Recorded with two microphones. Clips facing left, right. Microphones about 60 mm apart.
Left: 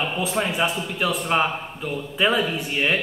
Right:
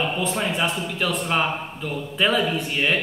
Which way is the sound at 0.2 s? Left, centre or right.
Centre.